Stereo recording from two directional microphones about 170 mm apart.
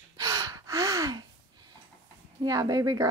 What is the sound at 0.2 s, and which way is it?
Gasp, 20° right (ahead or behind).